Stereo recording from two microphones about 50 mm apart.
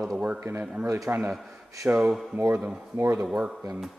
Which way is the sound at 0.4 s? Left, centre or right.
Right.